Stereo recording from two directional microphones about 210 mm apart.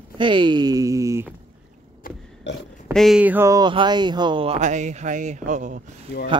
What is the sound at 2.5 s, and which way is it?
Speech, 55° left (ahead or behind).